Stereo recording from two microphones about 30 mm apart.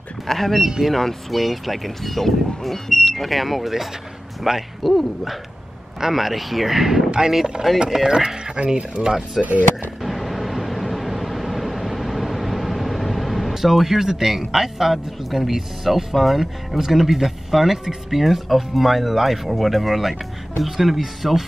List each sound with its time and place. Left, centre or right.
0.3 s speech: centre
1.3 s speech: centre; by 9.1 s right
9.4 s speech: right
10.0 s vehicle: centre
14.4 s speech: centre